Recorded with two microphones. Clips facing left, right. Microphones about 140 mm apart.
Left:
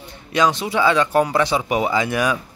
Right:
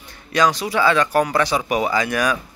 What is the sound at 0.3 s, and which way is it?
A man's voice, 25° left (ahead or behind).